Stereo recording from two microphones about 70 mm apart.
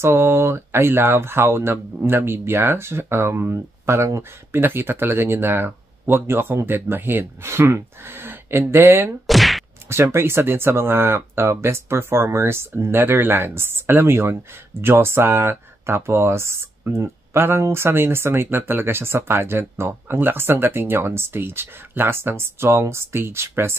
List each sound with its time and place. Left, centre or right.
0.0 s speech: right
9.3 s whack: centre
10.0 s speech: right